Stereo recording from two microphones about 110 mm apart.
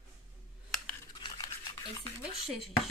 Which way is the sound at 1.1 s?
40° left (ahead or behind).